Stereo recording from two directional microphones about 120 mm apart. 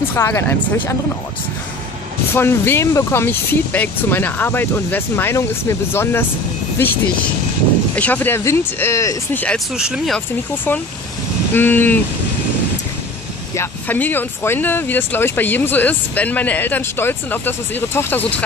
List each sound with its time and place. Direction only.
0.1 s speech: 20° left (ahead or behind)
2.3 s speech: 20° left (ahead or behind)
7.9 s speech: 15° left (ahead or behind)
9.8 s speech: 5° right (ahead or behind)
10.1 s speech: 15° left (ahead or behind)
13.6 s speech: 15° left (ahead or behind)